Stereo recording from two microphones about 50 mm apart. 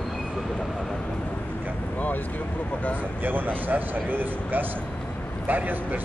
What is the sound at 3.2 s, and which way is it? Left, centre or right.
Speech, right.